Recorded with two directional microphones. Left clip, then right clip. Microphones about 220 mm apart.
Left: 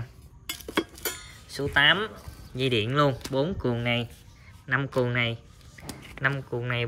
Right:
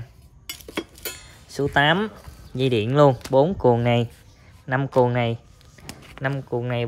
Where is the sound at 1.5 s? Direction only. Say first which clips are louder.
Right 2 dB; 30° right (ahead or behind).